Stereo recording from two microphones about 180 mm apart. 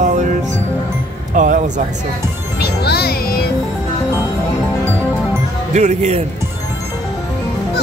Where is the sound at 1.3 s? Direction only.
45° right (ahead or behind).